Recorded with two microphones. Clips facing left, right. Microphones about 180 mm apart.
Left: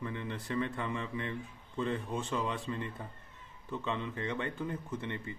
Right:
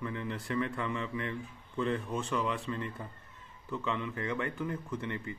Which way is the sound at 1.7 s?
20° left (ahead or behind).